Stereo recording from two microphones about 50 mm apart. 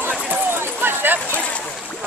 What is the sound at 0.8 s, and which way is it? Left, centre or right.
Speech, right.